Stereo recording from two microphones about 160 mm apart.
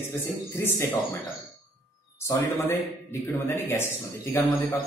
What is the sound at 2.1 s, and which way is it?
A man's voice, 15° left (ahead or behind).